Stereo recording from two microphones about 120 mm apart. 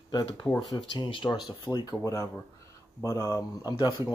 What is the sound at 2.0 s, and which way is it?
Speech, 25° left (ahead or behind).